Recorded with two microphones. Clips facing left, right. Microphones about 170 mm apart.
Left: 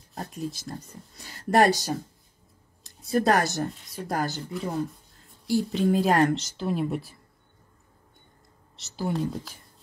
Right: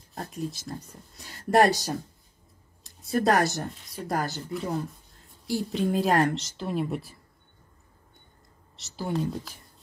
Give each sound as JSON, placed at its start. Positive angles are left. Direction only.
{"t": 0.1, "sound": "speech", "side_deg": 0}
{"t": 2.8, "sound": "speech", "side_deg": 0}
{"t": 8.7, "sound": "speech", "side_deg": 0}